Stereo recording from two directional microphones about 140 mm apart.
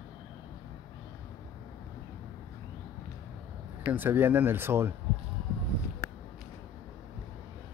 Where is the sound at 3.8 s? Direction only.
15° right (ahead or behind).